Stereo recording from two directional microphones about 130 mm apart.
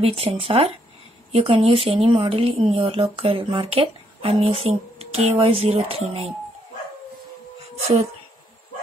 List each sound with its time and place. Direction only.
0.0 s speech: 50° right (ahead or behind)